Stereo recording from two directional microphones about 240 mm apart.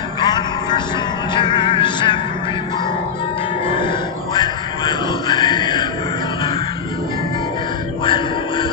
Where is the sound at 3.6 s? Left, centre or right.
Centre.